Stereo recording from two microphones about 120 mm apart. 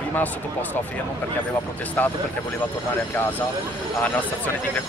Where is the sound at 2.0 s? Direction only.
15° left (ahead or behind).